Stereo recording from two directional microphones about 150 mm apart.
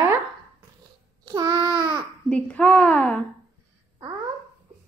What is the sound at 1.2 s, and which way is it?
Child singing, 25° right (ahead or behind).